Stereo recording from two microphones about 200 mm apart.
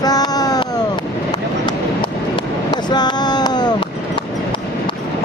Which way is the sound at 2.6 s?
20° left (ahead or behind).